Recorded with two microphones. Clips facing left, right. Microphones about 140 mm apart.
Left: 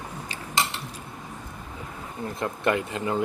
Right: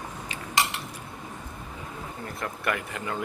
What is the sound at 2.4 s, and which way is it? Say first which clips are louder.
Speech: left 5 dB; 20° left (ahead or behind).